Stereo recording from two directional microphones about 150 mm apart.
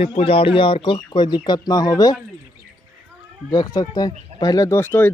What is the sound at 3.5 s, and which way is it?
Speech, 25° left (ahead or behind).